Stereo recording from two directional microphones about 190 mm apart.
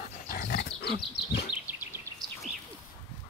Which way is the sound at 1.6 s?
10° right (ahead or behind).